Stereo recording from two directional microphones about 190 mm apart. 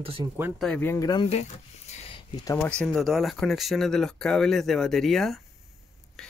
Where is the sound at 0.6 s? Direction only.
5° left (ahead or behind); by 1.5 s 30° left (ahead or behind).